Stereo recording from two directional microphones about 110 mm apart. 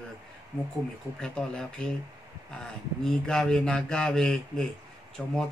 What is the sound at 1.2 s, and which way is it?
Speech, 5° left (ahead or behind).